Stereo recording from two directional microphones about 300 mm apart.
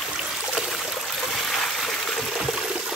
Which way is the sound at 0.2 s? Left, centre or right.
Centre.